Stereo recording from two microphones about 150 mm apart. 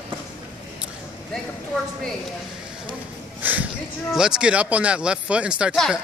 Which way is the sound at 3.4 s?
10° right (ahead or behind).